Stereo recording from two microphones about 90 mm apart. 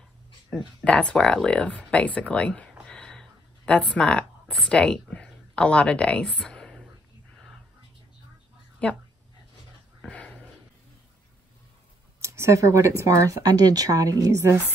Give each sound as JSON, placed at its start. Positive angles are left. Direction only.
{"t": 0.5, "sound": "speech", "side_deg": -5}
{"t": 0.8, "sound": "speech", "side_deg": 10}
{"t": 8.8, "sound": "speech", "side_deg": 15}
{"t": 10.0, "sound": "dog", "side_deg": 15}
{"t": 12.2, "sound": "speech", "side_deg": -35}